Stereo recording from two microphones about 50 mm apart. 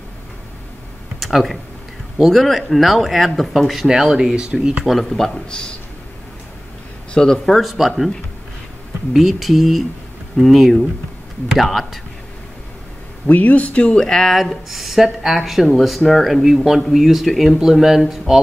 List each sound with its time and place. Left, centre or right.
1.2 s speech: centre
4.8 s speech: centre
5.3 s a man's voice: centre
7.2 s speech: centre
9.1 s speech: centre
13.3 s speech: left; by 14.3 s centre
14.3 s speech: centre